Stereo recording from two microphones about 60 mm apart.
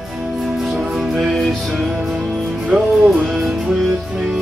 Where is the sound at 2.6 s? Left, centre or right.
Right.